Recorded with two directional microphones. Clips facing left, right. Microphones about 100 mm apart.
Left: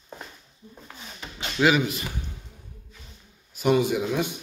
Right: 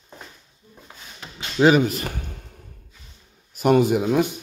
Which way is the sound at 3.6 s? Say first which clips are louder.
Right 4 dB; 50° right (ahead or behind).